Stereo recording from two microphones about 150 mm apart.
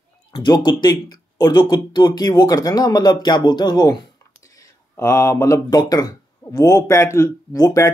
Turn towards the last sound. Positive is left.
turn(degrees=25)  # may be behind; listen again after turning